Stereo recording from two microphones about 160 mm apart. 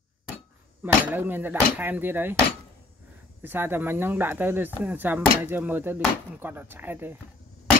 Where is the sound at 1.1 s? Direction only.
10° right (ahead or behind).